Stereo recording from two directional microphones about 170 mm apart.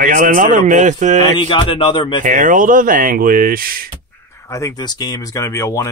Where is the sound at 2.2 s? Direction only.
50° right (ahead or behind).